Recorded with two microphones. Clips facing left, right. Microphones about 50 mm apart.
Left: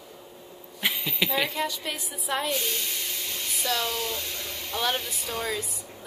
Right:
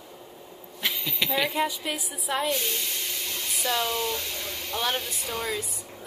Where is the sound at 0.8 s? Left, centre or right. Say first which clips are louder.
Left 2 dB; centre.